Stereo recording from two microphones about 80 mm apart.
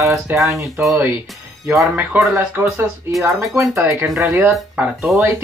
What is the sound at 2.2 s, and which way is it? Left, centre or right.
Speech, right.